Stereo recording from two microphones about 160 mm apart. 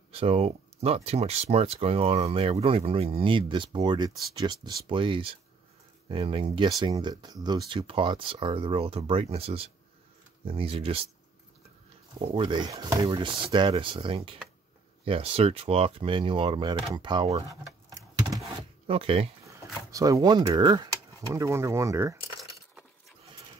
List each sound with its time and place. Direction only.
0.1 s speech: 40° right (ahead or behind)
12.2 s speech: 35° right (ahead or behind)
13.0 s speech: 35° right (ahead or behind)
18.6 s zipper: 35° right (ahead or behind)
19.4 s speech: 20° right (ahead or behind)
22.4 s keys jangling: centre (ahead or behind)